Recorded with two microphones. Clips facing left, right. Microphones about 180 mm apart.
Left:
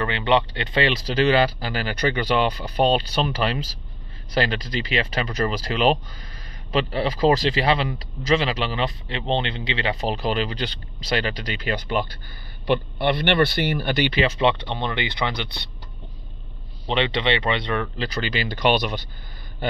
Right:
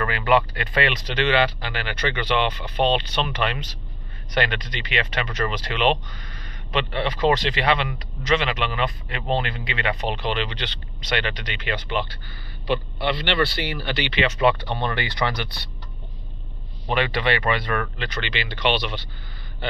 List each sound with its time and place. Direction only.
0.0 s speech: 25° left (ahead or behind)
12.6 s speech: 50° left (ahead or behind)
14.4 s speech: 20° left (ahead or behind)
16.9 s speech: 25° left (ahead or behind)
17.9 s speech: 35° left (ahead or behind)